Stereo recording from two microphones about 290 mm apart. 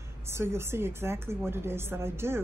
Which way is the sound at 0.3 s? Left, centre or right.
Centre.